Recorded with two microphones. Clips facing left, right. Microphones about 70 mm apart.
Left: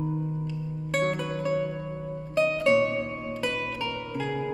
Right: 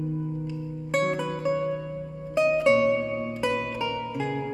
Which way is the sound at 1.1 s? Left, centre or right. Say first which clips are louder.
Right 1 dB; centre.